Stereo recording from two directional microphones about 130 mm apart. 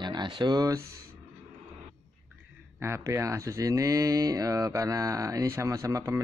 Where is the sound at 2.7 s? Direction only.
20° right (ahead or behind).